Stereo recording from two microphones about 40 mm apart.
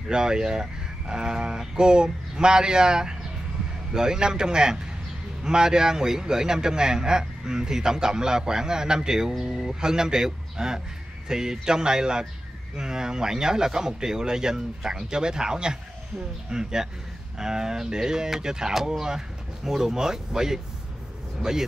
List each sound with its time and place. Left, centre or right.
0.1 s a man's voice: centre